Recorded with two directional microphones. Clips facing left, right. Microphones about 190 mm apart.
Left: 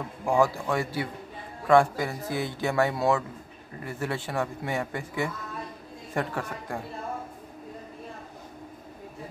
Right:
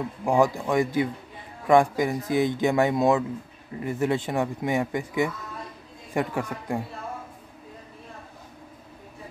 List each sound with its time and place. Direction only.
0.2 s speech: 15° right (ahead or behind)